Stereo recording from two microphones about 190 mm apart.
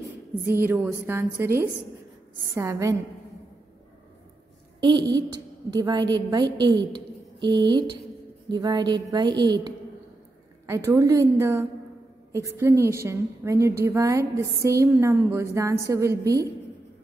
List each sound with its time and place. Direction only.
0.5 s a woman's voice: 15° right (ahead or behind)
4.7 s a woman's voice: 25° right (ahead or behind)
7.4 s a woman's voice: 25° right (ahead or behind)